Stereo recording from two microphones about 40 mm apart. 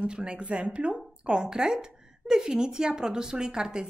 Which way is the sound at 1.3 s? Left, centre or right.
Centre.